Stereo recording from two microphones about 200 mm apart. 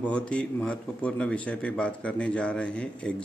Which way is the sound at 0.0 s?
5° left (ahead or behind).